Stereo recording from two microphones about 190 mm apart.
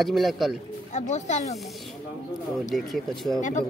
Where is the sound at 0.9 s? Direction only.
40° left (ahead or behind).